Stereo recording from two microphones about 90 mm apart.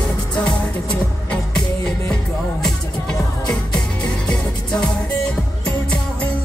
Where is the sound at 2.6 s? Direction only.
5° left (ahead or behind).